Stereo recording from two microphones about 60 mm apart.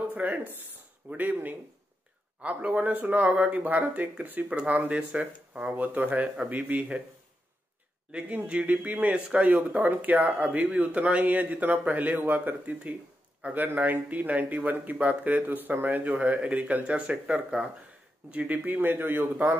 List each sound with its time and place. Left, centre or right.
0.1 s speech: right
8.1 s speech: right